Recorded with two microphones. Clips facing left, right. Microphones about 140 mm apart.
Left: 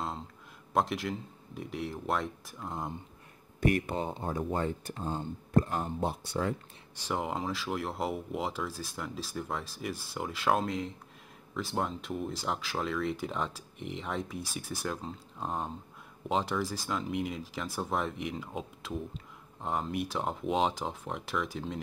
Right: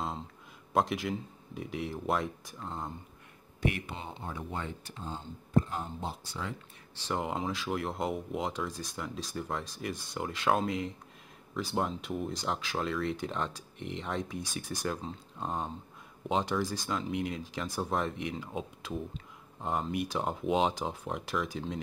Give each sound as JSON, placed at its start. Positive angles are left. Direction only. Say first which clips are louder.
{"t": 0.7, "sound": "speech", "louder": "right 1 dB", "side_deg": 0}
{"t": 3.6, "sound": "speech", "louder": "left 5 dB", "side_deg": 45}
{"t": 7.0, "sound": "speech", "louder": "even", "side_deg": 5}